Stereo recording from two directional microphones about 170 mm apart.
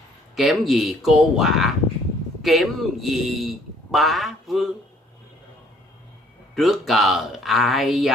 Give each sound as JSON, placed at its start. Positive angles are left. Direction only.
{"t": 0.4, "sound": "a man's voice", "side_deg": 0}
{"t": 6.5, "sound": "a man's voice", "side_deg": 0}